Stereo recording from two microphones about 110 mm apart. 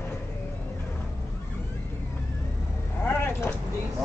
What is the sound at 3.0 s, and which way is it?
Vehicle, 20° left (ahead or behind).